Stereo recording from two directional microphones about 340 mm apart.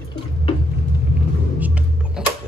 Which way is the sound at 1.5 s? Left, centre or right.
Centre.